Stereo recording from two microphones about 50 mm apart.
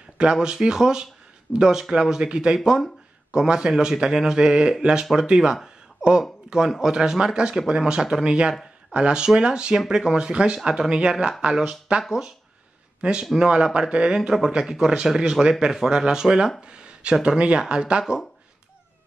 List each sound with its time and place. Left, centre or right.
0.2 s speech: centre